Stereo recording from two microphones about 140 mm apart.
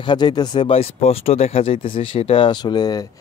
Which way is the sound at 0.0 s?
35° left (ahead or behind).